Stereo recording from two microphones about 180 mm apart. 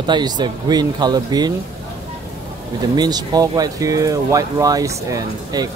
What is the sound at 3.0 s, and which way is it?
Speech, 20° right (ahead or behind).